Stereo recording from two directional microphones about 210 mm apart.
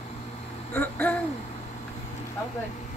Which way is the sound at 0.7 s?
10° left (ahead or behind).